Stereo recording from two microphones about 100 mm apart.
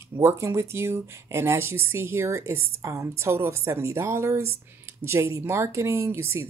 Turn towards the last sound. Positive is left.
turn(degrees=-25)  # may be behind; listen again after turning